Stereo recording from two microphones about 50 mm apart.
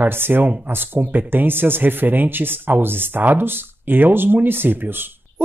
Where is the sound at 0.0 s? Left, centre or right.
Right.